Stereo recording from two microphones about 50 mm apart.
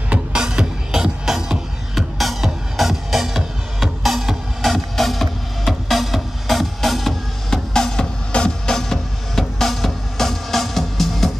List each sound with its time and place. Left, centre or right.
0.1 s music: centre
7.7 s music: centre
8.7 s music: centre